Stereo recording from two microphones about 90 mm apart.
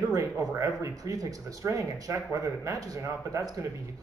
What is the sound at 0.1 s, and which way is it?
Speech, 40° right (ahead or behind).